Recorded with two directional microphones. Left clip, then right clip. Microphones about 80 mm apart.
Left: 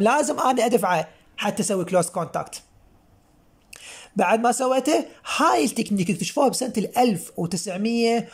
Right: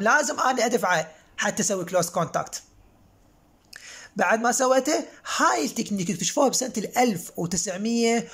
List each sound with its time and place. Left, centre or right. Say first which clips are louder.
0.0 s speech: left 1 dB; left
0.6 s speech: left 2 dB; left
1.9 s speech: left 1 dB; left
3.7 s speech: left 4 dB; left; by 8.3 s centre